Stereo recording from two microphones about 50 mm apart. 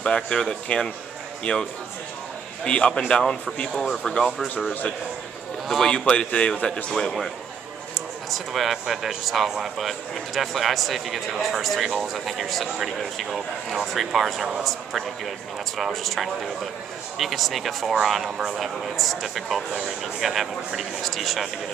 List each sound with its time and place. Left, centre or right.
0.0 s a man's voice: centre
5.7 s a man's voice: centre
5.9 s a man's voice: left
6.9 s a man's voice: centre
8.3 s a man's voice: centre